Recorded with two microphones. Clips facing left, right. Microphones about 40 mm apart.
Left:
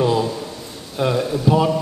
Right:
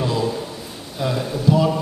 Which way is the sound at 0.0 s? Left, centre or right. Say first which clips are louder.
Left 4 dB; centre.